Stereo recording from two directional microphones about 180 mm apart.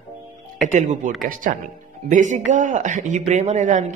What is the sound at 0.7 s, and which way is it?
A woman's voice, 40° right (ahead or behind).